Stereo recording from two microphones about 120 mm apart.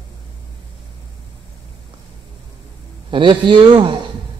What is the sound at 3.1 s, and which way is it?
Speech, 40° right (ahead or behind).